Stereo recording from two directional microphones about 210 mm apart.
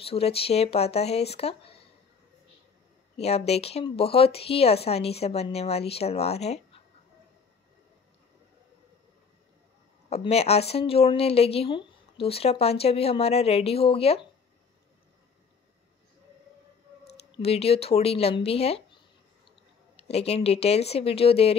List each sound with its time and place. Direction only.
0.0 s speech: 30° left (ahead or behind)
3.2 s speech: 30° left (ahead or behind)
10.0 s speech: 30° left (ahead or behind)
17.3 s speech: 30° left (ahead or behind)
20.0 s speech: 30° left (ahead or behind)